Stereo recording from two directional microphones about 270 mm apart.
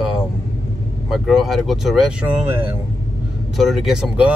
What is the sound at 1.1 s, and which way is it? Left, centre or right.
A man's voice, centre.